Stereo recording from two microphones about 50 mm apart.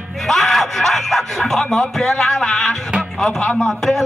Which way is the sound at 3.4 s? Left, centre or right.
Left.